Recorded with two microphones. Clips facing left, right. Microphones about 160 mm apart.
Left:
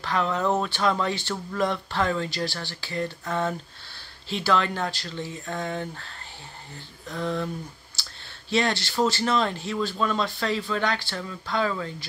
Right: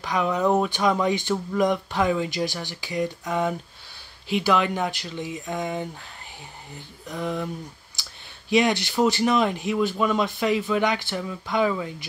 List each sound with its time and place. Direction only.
0.0 s speech: 15° right (ahead or behind)